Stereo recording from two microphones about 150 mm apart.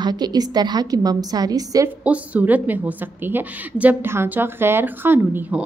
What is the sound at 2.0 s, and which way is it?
A woman's voice, 10° right (ahead or behind).